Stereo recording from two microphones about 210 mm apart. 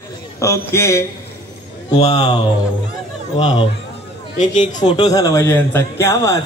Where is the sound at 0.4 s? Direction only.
15° left (ahead or behind).